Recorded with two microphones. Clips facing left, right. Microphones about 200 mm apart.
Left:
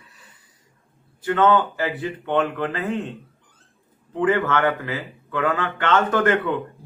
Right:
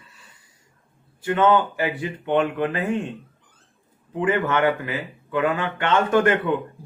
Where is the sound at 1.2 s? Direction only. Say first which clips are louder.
Even; 10° right (ahead or behind).